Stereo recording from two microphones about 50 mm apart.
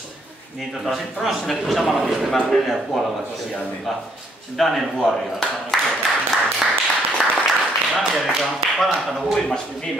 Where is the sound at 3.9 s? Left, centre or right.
Centre.